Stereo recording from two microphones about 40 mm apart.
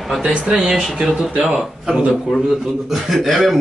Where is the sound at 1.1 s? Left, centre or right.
Centre.